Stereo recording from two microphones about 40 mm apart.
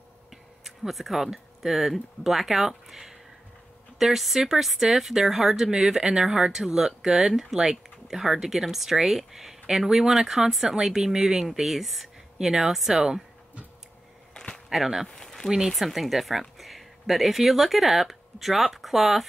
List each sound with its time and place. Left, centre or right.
0.3 s speech: centre
11.4 s speech: centre
14.3 s a sound: left
14.7 s speech: centre
15.0 s speech: centre
15.7 s speech: centre